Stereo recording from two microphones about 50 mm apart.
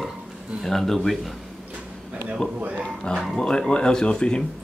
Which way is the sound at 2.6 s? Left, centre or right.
Right.